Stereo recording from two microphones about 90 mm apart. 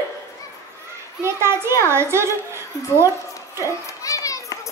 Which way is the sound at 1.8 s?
30° right (ahead or behind).